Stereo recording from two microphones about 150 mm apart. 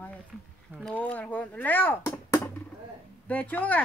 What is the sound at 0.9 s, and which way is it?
Speech, 10° left (ahead or behind).